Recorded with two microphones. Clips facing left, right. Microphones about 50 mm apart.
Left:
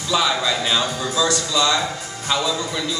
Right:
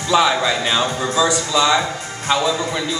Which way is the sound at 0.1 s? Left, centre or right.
Centre.